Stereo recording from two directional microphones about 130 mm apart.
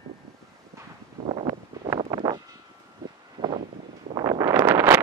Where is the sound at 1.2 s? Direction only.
45° right (ahead or behind).